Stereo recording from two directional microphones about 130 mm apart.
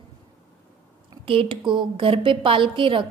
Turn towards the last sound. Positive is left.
turn(degrees=-40)  # may be behind; listen again after turning